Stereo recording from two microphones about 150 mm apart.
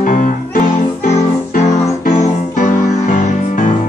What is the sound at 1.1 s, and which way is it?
Music, 50° left (ahead or behind).